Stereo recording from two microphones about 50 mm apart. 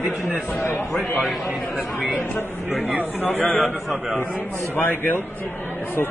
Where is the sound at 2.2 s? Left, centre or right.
Left.